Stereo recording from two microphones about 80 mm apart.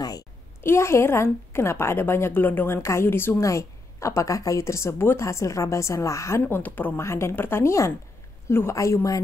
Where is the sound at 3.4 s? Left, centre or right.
Left.